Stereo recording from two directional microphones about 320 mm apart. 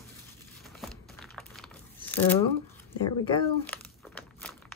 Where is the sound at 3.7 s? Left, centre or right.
Centre.